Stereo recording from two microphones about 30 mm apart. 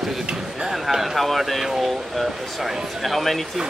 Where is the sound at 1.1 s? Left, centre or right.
Centre.